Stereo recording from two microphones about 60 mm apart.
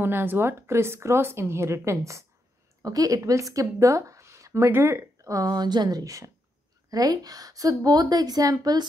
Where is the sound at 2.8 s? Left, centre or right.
Right.